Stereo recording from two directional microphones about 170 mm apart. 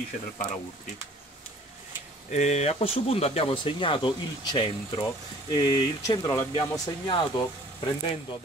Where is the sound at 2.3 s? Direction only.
40° left (ahead or behind); by 6.8 s 20° left (ahead or behind).